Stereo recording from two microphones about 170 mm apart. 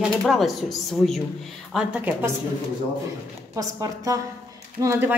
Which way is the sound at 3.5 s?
20° right (ahead or behind).